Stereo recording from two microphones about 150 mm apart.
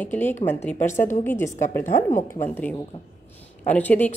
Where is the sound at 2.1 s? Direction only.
55° left (ahead or behind).